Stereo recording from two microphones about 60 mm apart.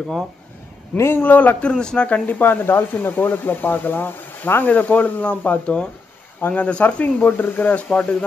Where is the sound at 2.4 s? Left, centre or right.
Left.